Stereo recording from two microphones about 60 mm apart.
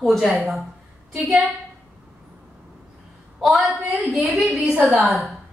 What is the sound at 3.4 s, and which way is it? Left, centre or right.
A woman's voice, centre.